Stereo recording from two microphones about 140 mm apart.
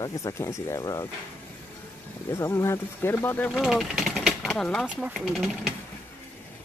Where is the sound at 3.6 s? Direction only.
5° right (ahead or behind).